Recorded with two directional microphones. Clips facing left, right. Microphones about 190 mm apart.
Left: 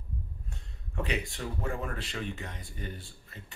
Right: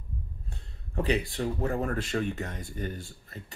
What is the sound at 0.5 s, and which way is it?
Speech, 35° right (ahead or behind).